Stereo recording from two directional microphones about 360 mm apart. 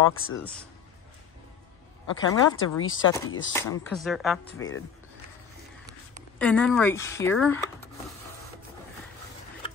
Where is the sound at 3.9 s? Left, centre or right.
Centre.